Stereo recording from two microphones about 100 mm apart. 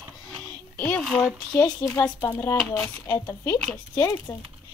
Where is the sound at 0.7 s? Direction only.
20° left (ahead or behind).